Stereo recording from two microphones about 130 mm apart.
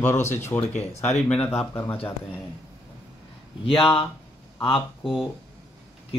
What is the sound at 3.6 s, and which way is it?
Speech, 45° left (ahead or behind).